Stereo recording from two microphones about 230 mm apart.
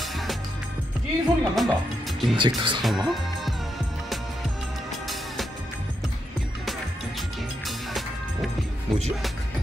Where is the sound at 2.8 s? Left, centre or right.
Centre.